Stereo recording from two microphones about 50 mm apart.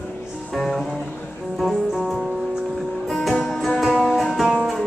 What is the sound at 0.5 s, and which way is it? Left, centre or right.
Music, centre.